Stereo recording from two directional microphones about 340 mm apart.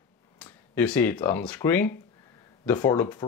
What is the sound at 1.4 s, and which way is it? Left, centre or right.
Speech, centre.